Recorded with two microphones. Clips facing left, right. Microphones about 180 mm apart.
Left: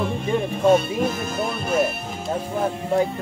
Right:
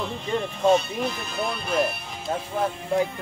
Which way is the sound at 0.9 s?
45° left (ahead or behind).